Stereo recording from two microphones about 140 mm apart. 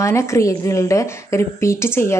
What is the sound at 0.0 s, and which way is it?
A woman's voice, 20° left (ahead or behind).